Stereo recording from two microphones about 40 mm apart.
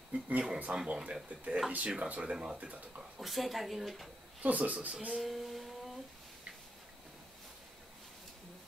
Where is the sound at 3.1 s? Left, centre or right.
Centre.